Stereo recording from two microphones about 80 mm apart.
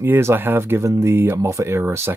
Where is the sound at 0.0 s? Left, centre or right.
Right.